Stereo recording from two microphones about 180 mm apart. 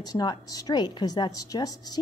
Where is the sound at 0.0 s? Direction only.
20° left (ahead or behind).